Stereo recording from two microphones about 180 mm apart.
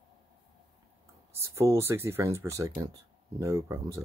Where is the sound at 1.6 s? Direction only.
15° right (ahead or behind).